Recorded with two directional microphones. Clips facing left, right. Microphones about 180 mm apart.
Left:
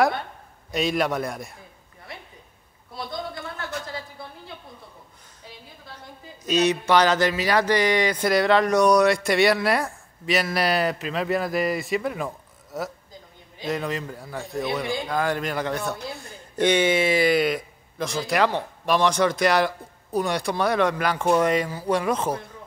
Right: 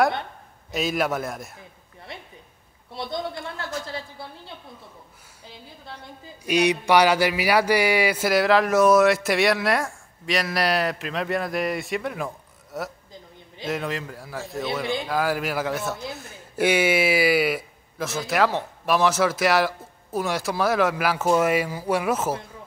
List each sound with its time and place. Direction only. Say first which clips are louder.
0.7 s a man's voice: left 1 dB; centre (ahead or behind)
2.9 s a woman's voice: right 3 dB; 25° right (ahead or behind)
6.4 s a man's voice: even; 15° right (ahead or behind)